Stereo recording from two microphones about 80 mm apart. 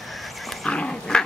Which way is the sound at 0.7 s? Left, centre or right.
Centre.